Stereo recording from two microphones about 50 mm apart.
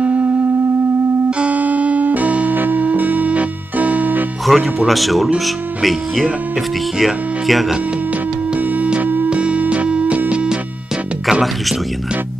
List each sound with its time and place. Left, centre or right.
1.4 s music: right
4.5 s speech: right
4.8 s speech: centre
8.8 s music: right
9.3 s music: right